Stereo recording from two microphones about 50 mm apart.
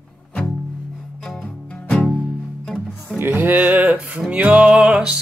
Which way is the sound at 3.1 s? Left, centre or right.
Right.